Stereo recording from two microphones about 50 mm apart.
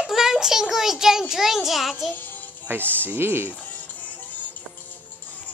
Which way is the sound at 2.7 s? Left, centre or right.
Right.